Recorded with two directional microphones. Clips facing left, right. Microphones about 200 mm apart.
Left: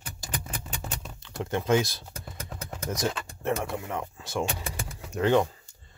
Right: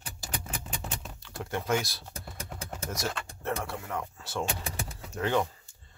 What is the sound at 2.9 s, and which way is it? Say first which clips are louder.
Speech: left 6 dB; 20° left (ahead or behind).